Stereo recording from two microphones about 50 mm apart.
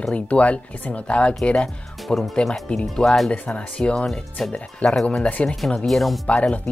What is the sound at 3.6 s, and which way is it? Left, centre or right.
Speech, left.